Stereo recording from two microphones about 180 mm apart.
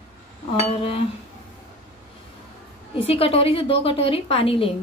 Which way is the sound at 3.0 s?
30° left (ahead or behind).